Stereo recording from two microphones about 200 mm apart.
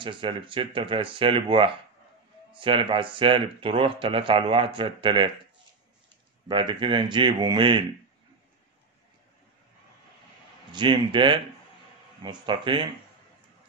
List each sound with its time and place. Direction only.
0.0 s speech: 25° right (ahead or behind)
6.5 s speech: 25° right (ahead or behind)
10.7 s speech: 25° right (ahead or behind)